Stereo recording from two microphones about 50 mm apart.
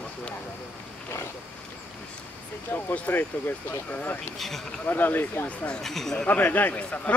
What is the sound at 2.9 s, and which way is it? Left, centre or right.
Speech, left.